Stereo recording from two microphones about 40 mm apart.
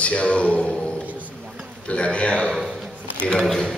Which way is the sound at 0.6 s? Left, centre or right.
Centre.